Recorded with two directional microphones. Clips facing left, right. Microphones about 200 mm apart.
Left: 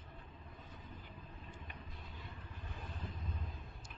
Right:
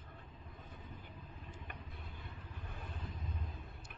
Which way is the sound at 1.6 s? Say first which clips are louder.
Right 1 dB; 60° right (ahead or behind).